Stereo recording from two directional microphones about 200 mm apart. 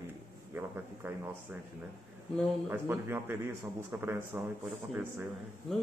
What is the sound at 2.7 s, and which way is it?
Speech, 10° right (ahead or behind).